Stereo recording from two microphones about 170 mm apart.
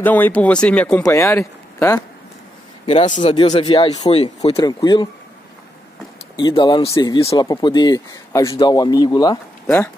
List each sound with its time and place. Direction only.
0.0 s speech: 10° left (ahead or behind)
1.0 s speech: 15° left (ahead or behind)
2.9 s speech: 40° left (ahead or behind)
4.6 s speech: 25° left (ahead or behind)
6.3 s speech: 25° left (ahead or behind)